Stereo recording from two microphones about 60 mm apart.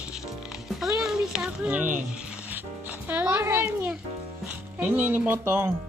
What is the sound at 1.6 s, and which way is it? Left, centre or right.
Speech, right.